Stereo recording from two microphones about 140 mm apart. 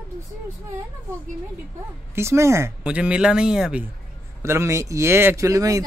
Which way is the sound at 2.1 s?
20° right (ahead or behind).